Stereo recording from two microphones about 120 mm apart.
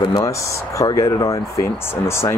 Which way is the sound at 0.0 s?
25° left (ahead or behind).